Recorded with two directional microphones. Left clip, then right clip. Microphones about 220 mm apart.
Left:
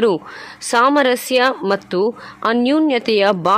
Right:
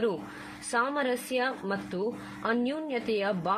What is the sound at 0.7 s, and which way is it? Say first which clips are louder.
Speech: left 15 dB; 50° left (ahead or behind).